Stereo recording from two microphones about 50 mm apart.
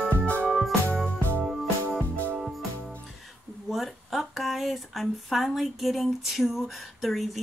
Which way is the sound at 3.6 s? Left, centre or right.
Centre.